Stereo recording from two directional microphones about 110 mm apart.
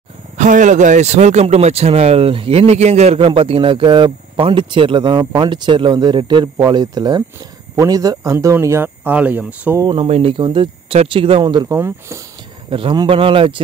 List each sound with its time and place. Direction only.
0.7 s speech: 90° right
3.2 s speech: 55° right (ahead or behind); by 9.8 s 15° right (ahead or behind)
9.9 s speech: 65° right (ahead or behind)
11.7 s speech: 25° right (ahead or behind)
12.6 s speech: 55° right (ahead or behind)